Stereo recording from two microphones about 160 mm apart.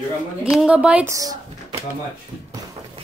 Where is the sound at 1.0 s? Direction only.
20° right (ahead or behind).